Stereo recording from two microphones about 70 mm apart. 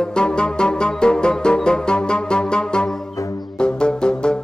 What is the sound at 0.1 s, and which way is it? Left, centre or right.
Music, centre.